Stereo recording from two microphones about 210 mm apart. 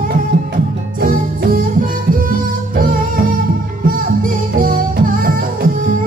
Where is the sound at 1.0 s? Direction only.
40° right (ahead or behind).